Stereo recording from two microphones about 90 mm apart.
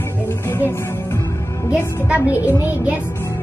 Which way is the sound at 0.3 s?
20° left (ahead or behind).